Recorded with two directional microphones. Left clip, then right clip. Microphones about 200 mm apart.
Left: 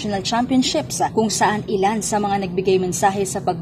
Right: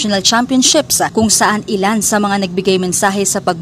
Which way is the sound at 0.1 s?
25° right (ahead or behind).